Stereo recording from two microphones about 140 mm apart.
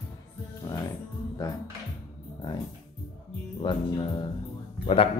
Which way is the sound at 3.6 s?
35° left (ahead or behind).